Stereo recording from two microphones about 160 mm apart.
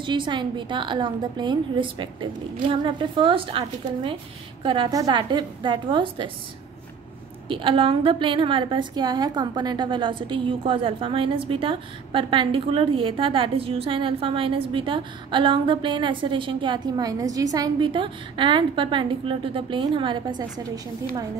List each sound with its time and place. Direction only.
0.0 s a woman's voice: 30° right (ahead or behind)
7.4 s a woman's voice: 30° right (ahead or behind)